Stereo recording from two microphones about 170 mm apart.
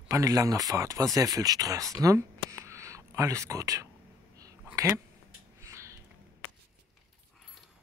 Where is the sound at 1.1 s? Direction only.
20° right (ahead or behind).